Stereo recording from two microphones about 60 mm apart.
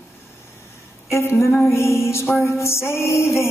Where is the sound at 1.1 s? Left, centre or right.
Left.